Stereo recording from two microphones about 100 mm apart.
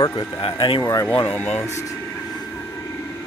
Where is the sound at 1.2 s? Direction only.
20° left (ahead or behind).